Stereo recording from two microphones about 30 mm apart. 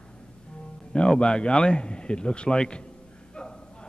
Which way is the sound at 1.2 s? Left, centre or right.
Left.